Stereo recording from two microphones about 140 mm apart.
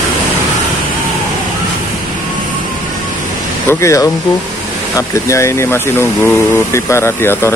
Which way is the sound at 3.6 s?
20° left (ahead or behind).